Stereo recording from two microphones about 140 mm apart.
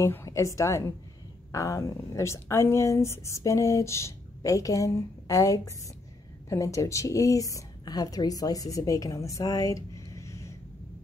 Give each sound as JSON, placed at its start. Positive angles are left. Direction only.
{"t": 0.0, "sound": "speech", "side_deg": 20}